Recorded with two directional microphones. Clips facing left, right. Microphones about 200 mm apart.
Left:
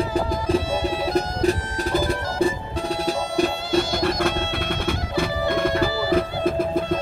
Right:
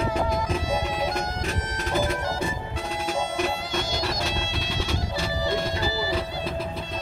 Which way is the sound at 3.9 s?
55° left (ahead or behind).